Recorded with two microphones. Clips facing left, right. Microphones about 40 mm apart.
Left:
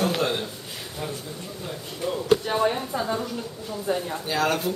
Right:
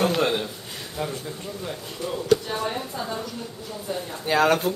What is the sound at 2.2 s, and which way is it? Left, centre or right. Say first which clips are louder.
Speech: left 2 dB; left.